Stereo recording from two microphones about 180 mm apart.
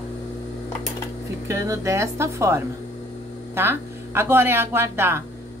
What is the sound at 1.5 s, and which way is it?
A woman's voice, 15° right (ahead or behind).